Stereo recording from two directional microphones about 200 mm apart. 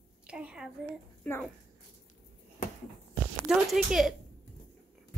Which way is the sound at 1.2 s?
5° left (ahead or behind).